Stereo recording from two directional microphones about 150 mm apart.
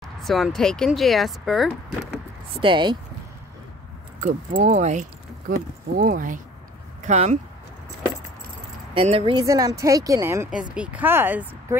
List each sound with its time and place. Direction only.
0.2 s speech: centre (ahead or behind)
2.6 s speech: 30° right (ahead or behind)
4.6 s speech: 50° right (ahead or behind)
5.9 s speech: 65° right (ahead or behind)
7.0 s speech: 50° right (ahead or behind)
8.9 s speech: 40° right (ahead or behind); by 10.5 s 20° right (ahead or behind)
10.5 s speech: 5° right (ahead or behind)